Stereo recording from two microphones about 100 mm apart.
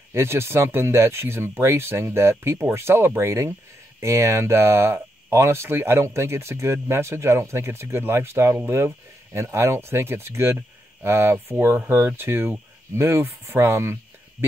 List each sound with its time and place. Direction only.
0.1 s speech: 25° right (ahead or behind)